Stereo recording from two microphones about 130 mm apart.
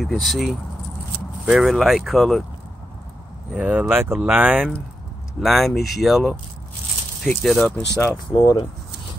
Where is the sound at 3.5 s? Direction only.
10° right (ahead or behind); by 7.7 s 10° left (ahead or behind).